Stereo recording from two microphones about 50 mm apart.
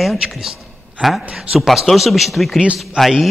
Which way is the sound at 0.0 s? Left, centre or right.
Centre.